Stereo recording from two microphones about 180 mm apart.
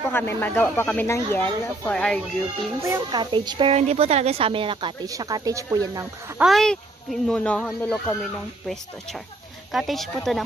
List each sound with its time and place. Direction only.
0.1 s speech: 10° left (ahead or behind)
2.8 s a woman's voice: 20° right (ahead or behind)
6.3 s speech: centre (ahead or behind)